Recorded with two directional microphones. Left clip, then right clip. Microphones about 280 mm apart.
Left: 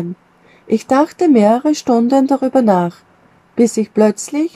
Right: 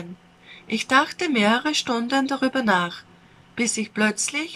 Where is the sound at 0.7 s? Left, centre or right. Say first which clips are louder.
Left 6 dB; left.